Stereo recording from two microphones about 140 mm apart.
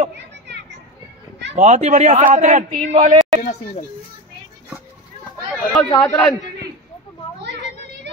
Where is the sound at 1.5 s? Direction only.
60° right (ahead or behind).